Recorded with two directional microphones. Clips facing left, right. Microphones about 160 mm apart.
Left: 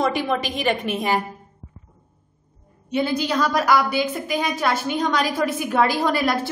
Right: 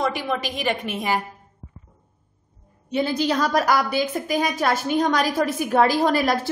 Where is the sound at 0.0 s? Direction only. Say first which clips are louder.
Left 3 dB; centre (ahead or behind).